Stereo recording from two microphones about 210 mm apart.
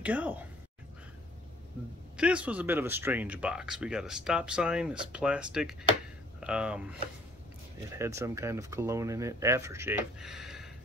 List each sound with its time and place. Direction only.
0.0 s speech: 5° right (ahead or behind)
2.1 s speech: 5° right (ahead or behind)